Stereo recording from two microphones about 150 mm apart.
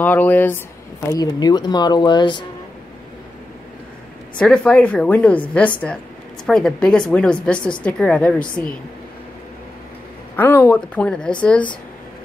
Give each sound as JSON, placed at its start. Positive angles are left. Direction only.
{"t": 0.0, "sound": "a woman's voice", "side_deg": 10}
{"t": 1.0, "sound": "speech", "side_deg": 25}
{"t": 4.4, "sound": "a woman's voice", "side_deg": 5}
{"t": 10.3, "sound": "a woman's voice", "side_deg": 10}